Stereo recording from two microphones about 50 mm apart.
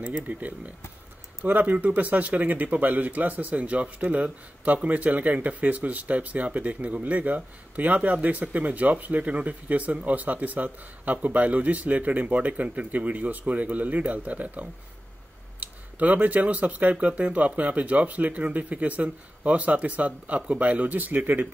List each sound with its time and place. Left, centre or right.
0.0 s speech: right